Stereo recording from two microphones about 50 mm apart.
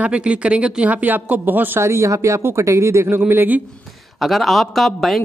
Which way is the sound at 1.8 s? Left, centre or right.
Right.